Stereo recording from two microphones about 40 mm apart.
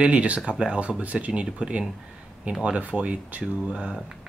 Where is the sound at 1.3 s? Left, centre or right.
Right.